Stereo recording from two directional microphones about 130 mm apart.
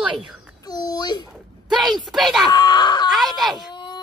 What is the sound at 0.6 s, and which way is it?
Speech, 30° left (ahead or behind).